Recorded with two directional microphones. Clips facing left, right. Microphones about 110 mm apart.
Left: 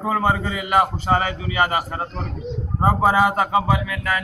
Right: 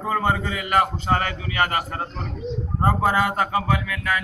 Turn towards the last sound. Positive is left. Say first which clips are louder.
# left 1 dB
turn(degrees=5)  # may be behind; listen again after turning